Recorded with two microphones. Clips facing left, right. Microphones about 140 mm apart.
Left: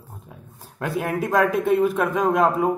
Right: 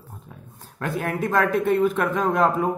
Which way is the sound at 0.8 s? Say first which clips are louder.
Left 1 dB; 10° left (ahead or behind).